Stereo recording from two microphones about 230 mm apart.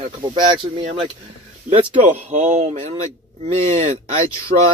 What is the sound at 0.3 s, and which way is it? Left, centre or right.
Speech, right.